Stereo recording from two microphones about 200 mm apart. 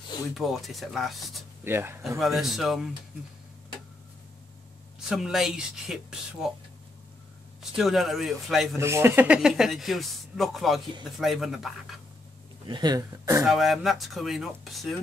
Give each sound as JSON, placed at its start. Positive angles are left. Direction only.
{"t": 0.3, "sound": "speech", "side_deg": 0}
{"t": 1.6, "sound": "speech", "side_deg": -10}
{"t": 5.1, "sound": "speech", "side_deg": 0}
{"t": 7.7, "sound": "speech", "side_deg": 0}
{"t": 8.7, "sound": "speech", "side_deg": -15}
{"t": 12.6, "sound": "speech", "side_deg": -20}
{"t": 13.4, "sound": "speech", "side_deg": 0}